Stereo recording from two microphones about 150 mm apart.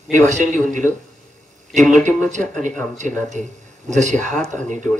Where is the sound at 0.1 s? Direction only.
55° right (ahead or behind).